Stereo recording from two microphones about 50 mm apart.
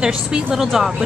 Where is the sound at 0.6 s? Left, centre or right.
Centre.